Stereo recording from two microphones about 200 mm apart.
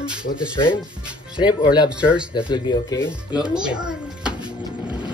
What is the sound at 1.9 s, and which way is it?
Speech, 5° right (ahead or behind).